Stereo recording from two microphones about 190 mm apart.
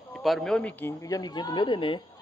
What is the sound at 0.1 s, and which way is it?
A man's voice, centre (ahead or behind).